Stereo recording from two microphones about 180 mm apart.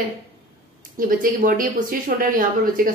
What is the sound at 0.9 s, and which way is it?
A woman's voice, 50° right (ahead or behind).